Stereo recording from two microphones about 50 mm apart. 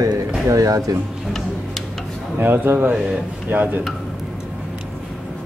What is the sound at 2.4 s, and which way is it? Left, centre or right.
Speech, right.